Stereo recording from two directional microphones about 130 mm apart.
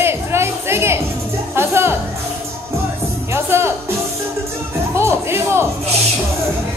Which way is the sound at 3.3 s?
20° right (ahead or behind).